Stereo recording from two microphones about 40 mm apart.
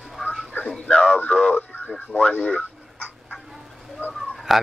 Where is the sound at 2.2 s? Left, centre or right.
Left.